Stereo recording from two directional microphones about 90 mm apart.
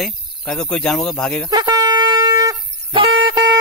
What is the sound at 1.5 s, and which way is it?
Shofar, 50° right (ahead or behind).